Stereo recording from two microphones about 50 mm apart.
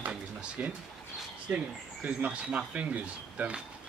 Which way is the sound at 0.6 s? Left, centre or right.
Right.